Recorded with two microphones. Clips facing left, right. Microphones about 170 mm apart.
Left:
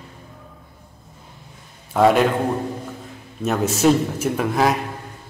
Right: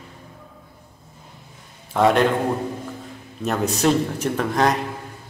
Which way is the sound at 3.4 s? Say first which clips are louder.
Left 3 dB; centre (ahead or behind).